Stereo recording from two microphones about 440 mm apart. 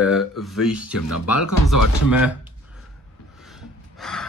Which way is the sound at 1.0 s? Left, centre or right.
Left.